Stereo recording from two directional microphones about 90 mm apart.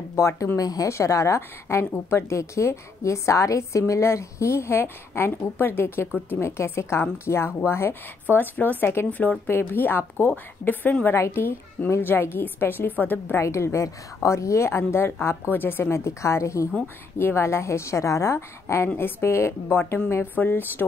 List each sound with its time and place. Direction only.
0.1 s a woman's voice: 35° left (ahead or behind); by 13.4 s 20° left (ahead or behind)
13.4 s a woman's voice: 30° left (ahead or behind)